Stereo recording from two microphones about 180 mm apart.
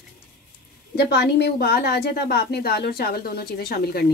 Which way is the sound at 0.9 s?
65° left (ahead or behind).